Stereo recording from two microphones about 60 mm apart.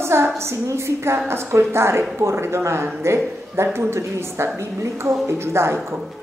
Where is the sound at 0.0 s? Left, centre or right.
Right.